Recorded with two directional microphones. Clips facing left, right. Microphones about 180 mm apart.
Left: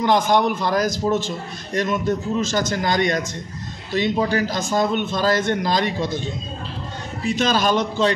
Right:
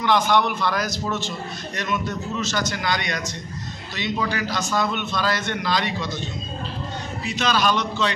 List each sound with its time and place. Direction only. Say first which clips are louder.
0.0 s a man's voice: left 2 dB; 45° left (ahead or behind)
7.3 s a man's voice: left 2 dB; 45° left (ahead or behind)